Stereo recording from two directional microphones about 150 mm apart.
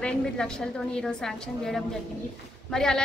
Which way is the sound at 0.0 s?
5° left (ahead or behind).